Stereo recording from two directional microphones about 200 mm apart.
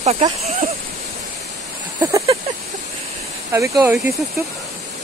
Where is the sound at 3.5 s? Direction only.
15° right (ahead or behind).